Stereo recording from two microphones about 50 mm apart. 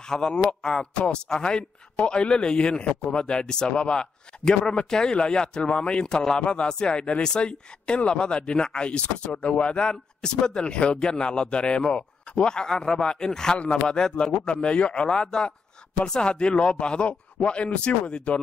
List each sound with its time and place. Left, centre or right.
0.1 s a man's voice: centre